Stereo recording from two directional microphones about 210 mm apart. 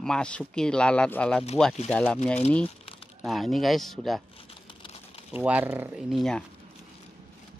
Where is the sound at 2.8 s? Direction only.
25° left (ahead or behind).